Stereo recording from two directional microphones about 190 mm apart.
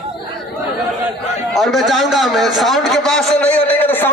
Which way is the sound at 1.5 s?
Centre (ahead or behind).